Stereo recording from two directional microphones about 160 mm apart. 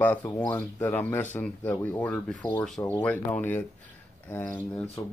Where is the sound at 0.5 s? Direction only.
10° left (ahead or behind).